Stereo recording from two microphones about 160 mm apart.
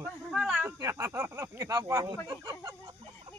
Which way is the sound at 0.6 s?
20° right (ahead or behind).